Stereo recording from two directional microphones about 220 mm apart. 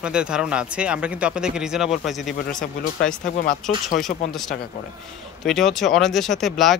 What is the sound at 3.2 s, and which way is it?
Speech, 40° left (ahead or behind).